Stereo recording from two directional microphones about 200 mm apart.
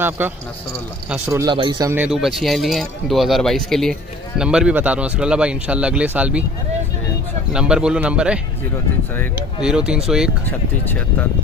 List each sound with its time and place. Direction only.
0.2 s a man's voice: 10° right (ahead or behind)
2.0 s speech: centre (ahead or behind)
7.5 s speech: 5° right (ahead or behind)
9.6 s speech: 5° right (ahead or behind)
10.9 s speech: 10° left (ahead or behind)